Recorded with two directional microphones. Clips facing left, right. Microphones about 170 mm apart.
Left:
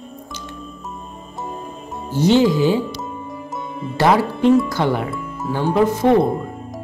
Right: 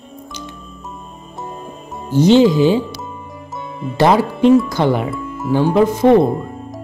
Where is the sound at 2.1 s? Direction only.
20° right (ahead or behind).